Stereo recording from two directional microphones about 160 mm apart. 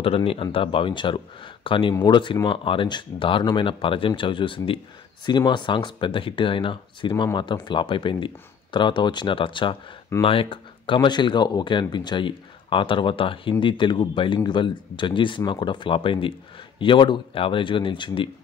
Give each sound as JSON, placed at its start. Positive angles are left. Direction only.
{"t": 0.0, "sound": "speech", "side_deg": 35}